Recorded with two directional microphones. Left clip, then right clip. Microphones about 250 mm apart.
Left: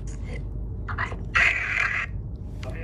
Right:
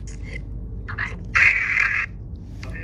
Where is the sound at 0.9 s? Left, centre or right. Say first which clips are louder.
Right 2 dB; left.